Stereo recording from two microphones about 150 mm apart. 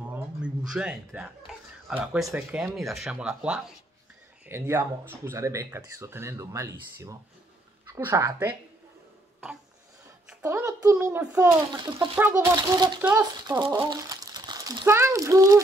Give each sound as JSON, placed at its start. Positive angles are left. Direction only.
{"t": 0.0, "sound": "music", "side_deg": -10}
{"t": 1.9, "sound": "speech", "side_deg": -5}
{"t": 4.5, "sound": "speech", "side_deg": -15}
{"t": 10.4, "sound": "speech", "side_deg": -20}
{"t": 12.5, "sound": "speech", "side_deg": -30}